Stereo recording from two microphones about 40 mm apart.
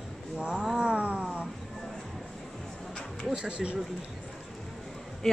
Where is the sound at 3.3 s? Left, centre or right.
Right.